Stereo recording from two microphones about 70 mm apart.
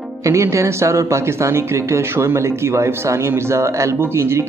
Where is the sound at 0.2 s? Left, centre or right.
Right.